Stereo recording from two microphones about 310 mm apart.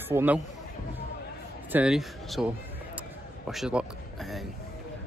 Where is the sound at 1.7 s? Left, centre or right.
Centre.